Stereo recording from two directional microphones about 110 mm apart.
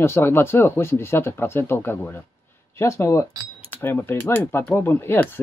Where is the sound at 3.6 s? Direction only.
15° left (ahead or behind).